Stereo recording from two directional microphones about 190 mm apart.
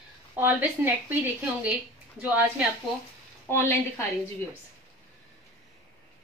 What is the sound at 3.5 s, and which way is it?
Speech, 15° left (ahead or behind).